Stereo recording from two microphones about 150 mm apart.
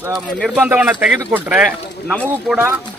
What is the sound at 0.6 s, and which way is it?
Speech, 10° right (ahead or behind).